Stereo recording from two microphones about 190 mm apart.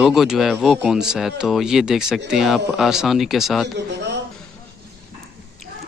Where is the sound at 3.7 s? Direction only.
65° right (ahead or behind).